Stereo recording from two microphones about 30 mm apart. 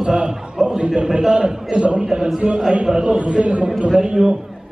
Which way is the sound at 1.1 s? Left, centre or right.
Right.